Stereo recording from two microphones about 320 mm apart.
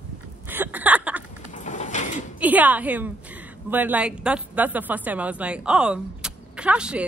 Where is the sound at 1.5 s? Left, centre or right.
Left.